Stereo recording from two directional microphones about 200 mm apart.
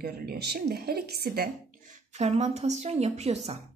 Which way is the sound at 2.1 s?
35° right (ahead or behind).